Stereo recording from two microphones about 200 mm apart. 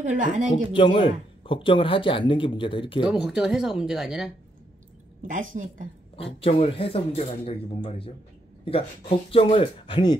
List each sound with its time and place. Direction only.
0.0 s a woman's voice: 35° right (ahead or behind)
0.7 s a man's voice: 25° left (ahead or behind)
3.0 s speech: 5° right (ahead or behind)
5.2 s a woman's voice: 40° right (ahead or behind)
6.1 s a man's voice: 30° left (ahead or behind)
9.3 s a man's voice: 30° left (ahead or behind)